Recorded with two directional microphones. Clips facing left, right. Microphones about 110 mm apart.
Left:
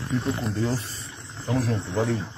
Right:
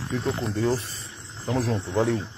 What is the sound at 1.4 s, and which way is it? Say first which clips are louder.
Speech: even; 20° right (ahead or behind).